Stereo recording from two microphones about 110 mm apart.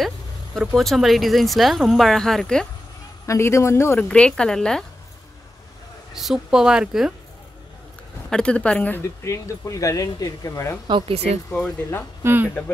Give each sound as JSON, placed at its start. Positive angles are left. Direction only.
{"t": 0.6, "sound": "speech", "side_deg": 0}
{"t": 3.3, "sound": "a man's voice", "side_deg": 25}
{"t": 4.1, "sound": "speech", "side_deg": 10}
{"t": 6.1, "sound": "speech", "side_deg": -5}
{"t": 8.3, "sound": "speech", "side_deg": 10}
{"t": 9.2, "sound": "speech", "side_deg": 30}
{"t": 10.9, "sound": "speech", "side_deg": -50}
{"t": 12.2, "sound": "speech", "side_deg": -20}
{"t": 12.4, "sound": "speech", "side_deg": 15}